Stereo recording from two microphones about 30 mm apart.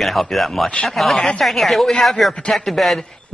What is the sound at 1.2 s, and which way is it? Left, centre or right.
Speech, left.